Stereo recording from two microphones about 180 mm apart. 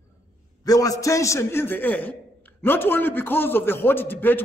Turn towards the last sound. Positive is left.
turn(degrees=10)  # may be behind; listen again after turning